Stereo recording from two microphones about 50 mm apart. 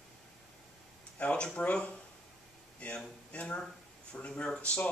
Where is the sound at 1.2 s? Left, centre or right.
Left.